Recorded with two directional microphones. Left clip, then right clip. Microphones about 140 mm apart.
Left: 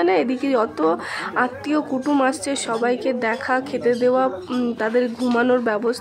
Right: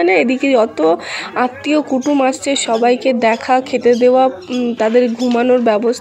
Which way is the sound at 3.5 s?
20° right (ahead or behind).